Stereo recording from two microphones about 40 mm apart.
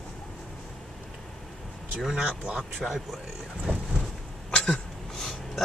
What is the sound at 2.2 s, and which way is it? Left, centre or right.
Speech, right.